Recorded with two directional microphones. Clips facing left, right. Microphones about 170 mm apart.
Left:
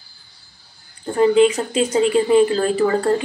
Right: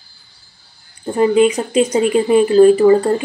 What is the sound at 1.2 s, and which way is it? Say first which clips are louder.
Speech: right 1 dB; 15° right (ahead or behind).